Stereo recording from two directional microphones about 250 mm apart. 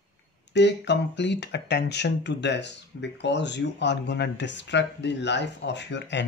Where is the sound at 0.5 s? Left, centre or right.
Left.